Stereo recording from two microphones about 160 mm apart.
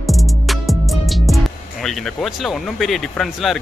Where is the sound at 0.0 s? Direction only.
Centre (ahead or behind).